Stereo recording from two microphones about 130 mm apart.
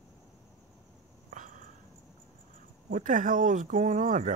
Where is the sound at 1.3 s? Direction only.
80° right.